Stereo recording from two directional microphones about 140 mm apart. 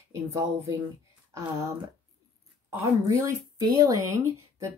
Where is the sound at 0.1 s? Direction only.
20° right (ahead or behind).